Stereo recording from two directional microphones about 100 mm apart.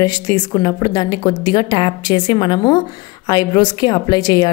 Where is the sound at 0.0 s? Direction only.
40° left (ahead or behind).